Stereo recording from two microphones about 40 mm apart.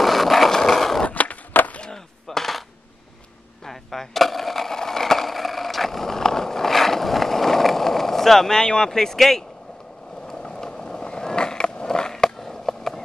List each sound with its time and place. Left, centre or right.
0.0 s a sound: centre
0.6 s dog: centre
1.0 s skateboard: left
2.2 s coin: centre
3.6 s skateboard: centre
12.4 s a sound: centre